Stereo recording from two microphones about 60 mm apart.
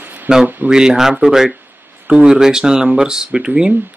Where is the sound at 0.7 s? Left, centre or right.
Centre.